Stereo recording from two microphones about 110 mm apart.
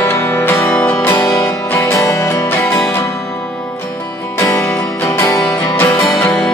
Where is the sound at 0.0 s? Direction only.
20° left (ahead or behind).